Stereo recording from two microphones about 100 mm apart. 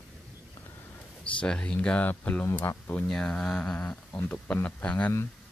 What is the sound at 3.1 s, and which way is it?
Speech, 5° left (ahead or behind).